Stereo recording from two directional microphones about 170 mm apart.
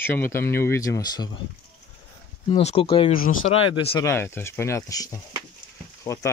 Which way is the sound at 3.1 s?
55° left (ahead or behind).